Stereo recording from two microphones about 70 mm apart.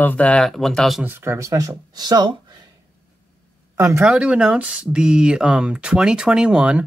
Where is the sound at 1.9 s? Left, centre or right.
Right.